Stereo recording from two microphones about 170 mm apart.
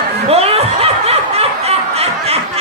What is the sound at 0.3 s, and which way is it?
Snicker, 35° right (ahead or behind).